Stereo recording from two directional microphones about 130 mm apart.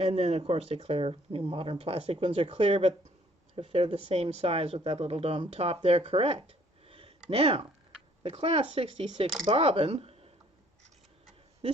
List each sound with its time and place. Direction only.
0.0 s speech: 50° right (ahead or behind)